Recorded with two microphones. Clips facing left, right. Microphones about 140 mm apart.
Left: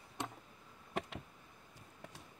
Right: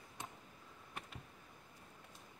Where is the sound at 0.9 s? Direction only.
90° left.